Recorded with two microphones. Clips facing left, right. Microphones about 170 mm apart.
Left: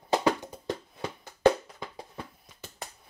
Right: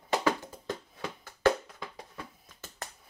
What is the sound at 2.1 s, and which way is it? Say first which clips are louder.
Hands: left 3 dB; 15° left (ahead or behind).